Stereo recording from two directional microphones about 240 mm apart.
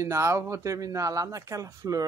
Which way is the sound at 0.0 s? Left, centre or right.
Centre.